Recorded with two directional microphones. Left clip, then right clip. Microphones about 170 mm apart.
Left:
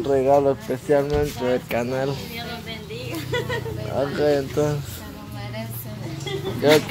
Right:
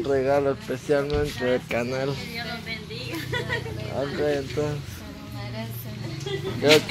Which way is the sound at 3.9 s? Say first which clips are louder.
Left 5 dB; 20° left (ahead or behind).